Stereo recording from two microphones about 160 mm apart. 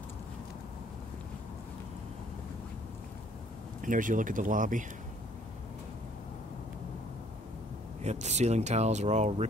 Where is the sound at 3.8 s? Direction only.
55° right (ahead or behind).